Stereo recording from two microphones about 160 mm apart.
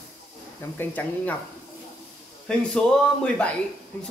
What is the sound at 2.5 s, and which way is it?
Speech, 5° left (ahead or behind).